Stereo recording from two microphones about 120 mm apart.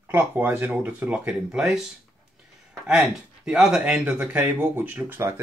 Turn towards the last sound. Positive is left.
turn(degrees=-20)  # may be behind; listen again after turning